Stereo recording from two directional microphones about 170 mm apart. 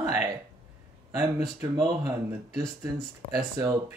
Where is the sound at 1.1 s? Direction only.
20° right (ahead or behind).